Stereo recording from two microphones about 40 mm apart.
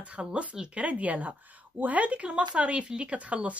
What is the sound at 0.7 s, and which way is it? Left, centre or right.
A woman's voice, right.